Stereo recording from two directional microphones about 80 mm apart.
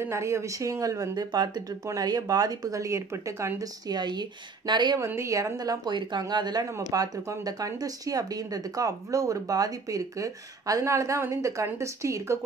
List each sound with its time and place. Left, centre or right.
0.0 s speech: right
2.0 s speech: right
3.8 s a woman's voice: right
4.9 s speech: right
5.9 s a woman's voice: right
6.8 s speech: right